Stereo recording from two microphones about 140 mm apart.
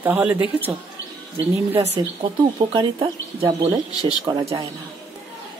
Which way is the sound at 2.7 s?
40° right (ahead or behind).